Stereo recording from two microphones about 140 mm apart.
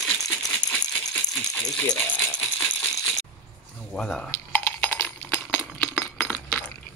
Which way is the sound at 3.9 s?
5° left (ahead or behind).